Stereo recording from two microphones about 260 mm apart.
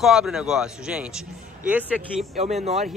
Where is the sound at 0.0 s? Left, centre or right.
Centre.